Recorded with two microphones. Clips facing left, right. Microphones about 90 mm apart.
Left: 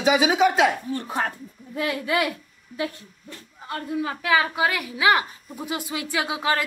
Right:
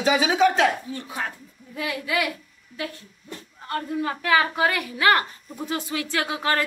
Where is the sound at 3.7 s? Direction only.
5° left (ahead or behind).